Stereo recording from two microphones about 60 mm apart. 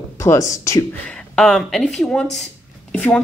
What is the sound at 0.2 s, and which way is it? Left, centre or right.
Speech, left.